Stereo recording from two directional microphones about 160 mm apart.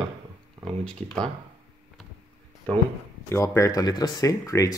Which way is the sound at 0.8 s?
5° left (ahead or behind).